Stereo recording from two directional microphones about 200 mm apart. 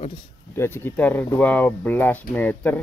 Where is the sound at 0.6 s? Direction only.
10° left (ahead or behind).